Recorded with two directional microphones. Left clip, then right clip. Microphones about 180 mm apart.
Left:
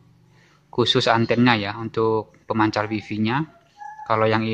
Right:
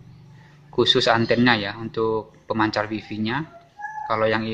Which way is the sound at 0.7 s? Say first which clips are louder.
Right 1 dB; 20° left (ahead or behind).